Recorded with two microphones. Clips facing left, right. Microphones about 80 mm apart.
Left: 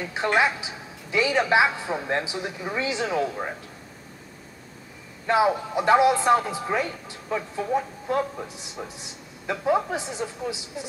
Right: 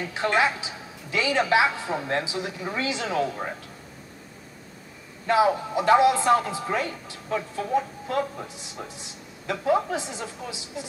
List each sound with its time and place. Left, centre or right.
0.1 s a man's voice: left
5.2 s a man's voice: left